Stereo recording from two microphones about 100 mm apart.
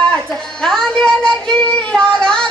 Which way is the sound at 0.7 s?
5° left (ahead or behind).